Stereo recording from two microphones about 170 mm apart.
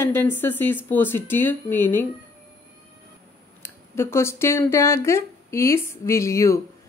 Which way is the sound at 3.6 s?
15° left (ahead or behind).